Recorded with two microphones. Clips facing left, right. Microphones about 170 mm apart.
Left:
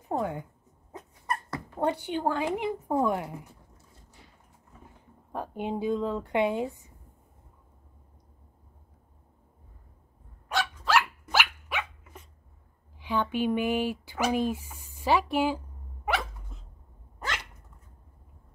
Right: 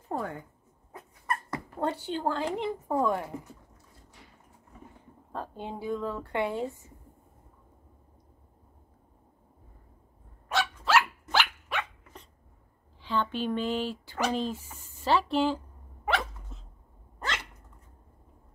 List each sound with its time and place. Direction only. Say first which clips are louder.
0.1 s a sound: left 4 dB; 15° left (ahead or behind)
0.9 s dog: even; 20° left (ahead or behind)
2.2 s speech: left 2 dB; 15° left (ahead or behind)
5.3 s speech: left 5 dB; 15° left (ahead or behind)
10.5 s dog: right 1 dB; centre (ahead or behind)
13.0 s speech: left 2 dB; 15° left (ahead or behind)